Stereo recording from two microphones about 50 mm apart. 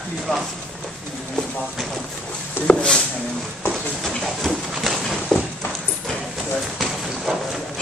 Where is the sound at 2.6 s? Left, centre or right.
Left.